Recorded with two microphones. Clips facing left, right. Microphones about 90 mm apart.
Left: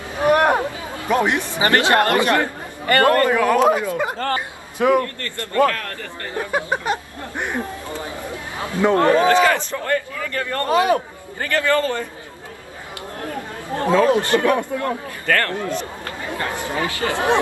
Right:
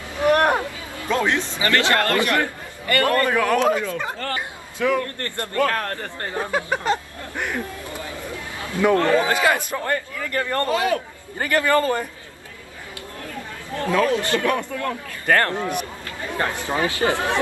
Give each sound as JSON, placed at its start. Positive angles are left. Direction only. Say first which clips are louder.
{"t": 0.1, "sound": "a sound", "louder": "left 2 dB", "side_deg": 20}
{"t": 1.5, "sound": "a man's voice", "louder": "left 6 dB", "side_deg": 20}
{"t": 5.7, "sound": "speech", "louder": "right 1 dB", "side_deg": -30}
{"t": 6.5, "sound": "chatter", "louder": "left 1 dB", "side_deg": 20}
{"t": 9.3, "sound": "a man's voice", "louder": "left 4 dB", "side_deg": -15}
{"t": 10.6, "sound": "speech", "louder": "left 5 dB", "side_deg": 20}
{"t": 11.3, "sound": "a man's voice", "louder": "even", "side_deg": -15}
{"t": 13.7, "sound": "speech", "louder": "left 4 dB", "side_deg": 20}
{"t": 15.2, "sound": "a man's voice", "louder": "right 1 dB", "side_deg": -20}